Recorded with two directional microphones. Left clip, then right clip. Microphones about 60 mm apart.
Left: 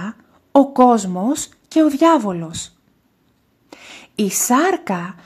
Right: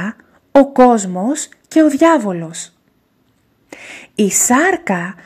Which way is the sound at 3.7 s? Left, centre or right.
Right.